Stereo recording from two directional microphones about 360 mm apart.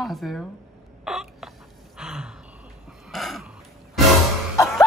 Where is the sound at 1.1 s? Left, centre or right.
Centre.